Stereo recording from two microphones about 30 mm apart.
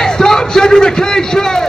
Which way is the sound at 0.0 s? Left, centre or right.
Centre.